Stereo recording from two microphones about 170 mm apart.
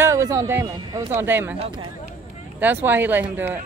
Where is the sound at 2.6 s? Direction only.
10° right (ahead or behind).